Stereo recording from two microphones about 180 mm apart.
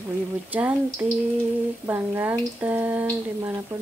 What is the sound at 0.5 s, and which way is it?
Speech, 10° right (ahead or behind).